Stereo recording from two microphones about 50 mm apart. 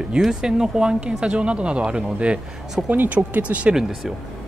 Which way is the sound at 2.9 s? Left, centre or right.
Right.